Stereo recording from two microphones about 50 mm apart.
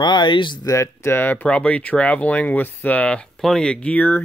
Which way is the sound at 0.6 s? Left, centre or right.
Left.